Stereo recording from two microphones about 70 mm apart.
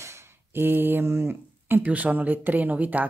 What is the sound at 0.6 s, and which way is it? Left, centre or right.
Speech, right.